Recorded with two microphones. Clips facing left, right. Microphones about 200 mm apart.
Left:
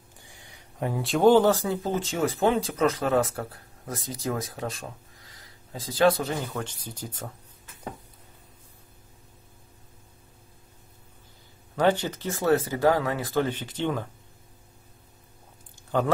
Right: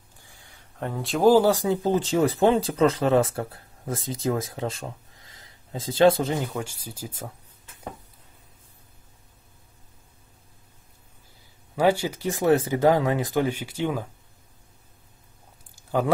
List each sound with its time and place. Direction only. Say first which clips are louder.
0.2 s a sound: left 2 dB; 20° left (ahead or behind)
0.8 s speech: even; centre (ahead or behind); by 1.8 s 15° right (ahead or behind)
1.8 s speech: right 5 dB; 30° right (ahead or behind)
6.3 s speech: right 3 dB; 10° right (ahead or behind)
11.7 s speech: right 2 dB; 10° right (ahead or behind)